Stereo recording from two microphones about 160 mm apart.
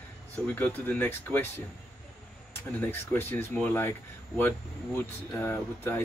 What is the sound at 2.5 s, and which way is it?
Speech, 15° left (ahead or behind).